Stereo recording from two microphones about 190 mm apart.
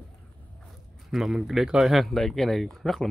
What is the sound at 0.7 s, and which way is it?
Speech, centre (ahead or behind).